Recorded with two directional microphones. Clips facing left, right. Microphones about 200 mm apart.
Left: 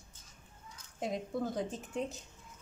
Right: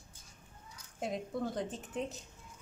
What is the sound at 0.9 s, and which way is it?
A woman's voice, centre (ahead or behind).